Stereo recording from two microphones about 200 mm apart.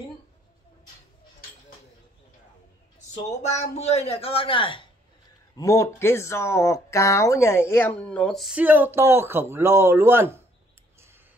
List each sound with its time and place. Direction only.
3.4 s a child's voice: 35° left (ahead or behind)
5.6 s speech: 15° left (ahead or behind); by 10.4 s 10° right (ahead or behind)